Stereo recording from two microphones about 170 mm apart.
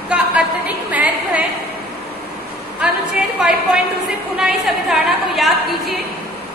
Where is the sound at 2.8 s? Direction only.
5° right (ahead or behind).